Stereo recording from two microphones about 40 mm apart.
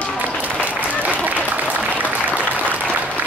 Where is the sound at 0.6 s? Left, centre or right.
Right.